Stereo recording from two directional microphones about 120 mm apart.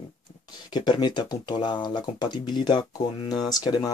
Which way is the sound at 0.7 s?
40° left (ahead or behind).